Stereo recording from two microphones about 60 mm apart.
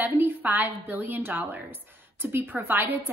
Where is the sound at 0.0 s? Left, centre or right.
Right.